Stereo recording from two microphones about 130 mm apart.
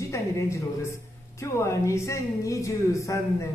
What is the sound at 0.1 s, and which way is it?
Speech, 20° left (ahead or behind).